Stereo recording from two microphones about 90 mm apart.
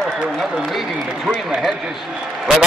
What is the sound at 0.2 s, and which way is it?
A man's voice, 5° right (ahead or behind).